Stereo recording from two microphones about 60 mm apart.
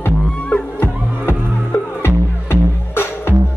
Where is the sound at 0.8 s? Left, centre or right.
Left.